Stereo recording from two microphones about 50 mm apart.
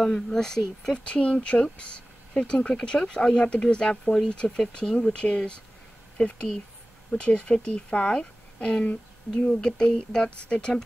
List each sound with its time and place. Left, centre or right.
0.0 s speech: centre
0.9 s speech: left